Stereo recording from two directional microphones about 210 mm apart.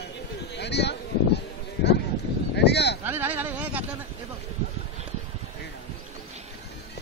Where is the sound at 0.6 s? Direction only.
55° left (ahead or behind).